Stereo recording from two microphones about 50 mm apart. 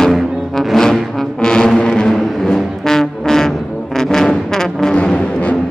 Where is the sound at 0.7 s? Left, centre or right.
Centre.